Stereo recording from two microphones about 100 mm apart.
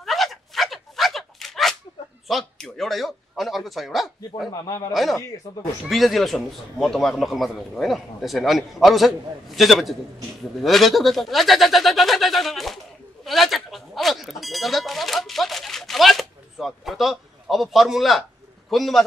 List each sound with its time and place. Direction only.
0.0 s a sound: centre (ahead or behind)
2.2 s a man's voice: centre (ahead or behind)
4.6 s speech: 35° left (ahead or behind)
4.9 s a man's voice: centre (ahead or behind)
13.2 s a sound: centre (ahead or behind)
18.7 s a man's voice: centre (ahead or behind)